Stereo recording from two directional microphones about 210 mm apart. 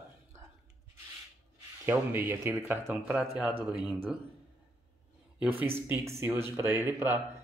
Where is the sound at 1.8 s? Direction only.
10° right (ahead or behind).